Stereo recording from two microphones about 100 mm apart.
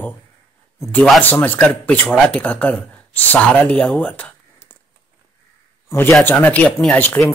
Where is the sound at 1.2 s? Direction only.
15° left (ahead or behind).